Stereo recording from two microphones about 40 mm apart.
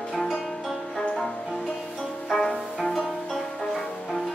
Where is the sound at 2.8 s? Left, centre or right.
Centre.